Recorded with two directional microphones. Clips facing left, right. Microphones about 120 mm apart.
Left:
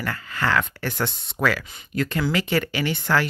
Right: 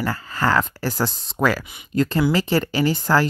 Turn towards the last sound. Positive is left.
turn(degrees=-35)  # may be behind; listen again after turning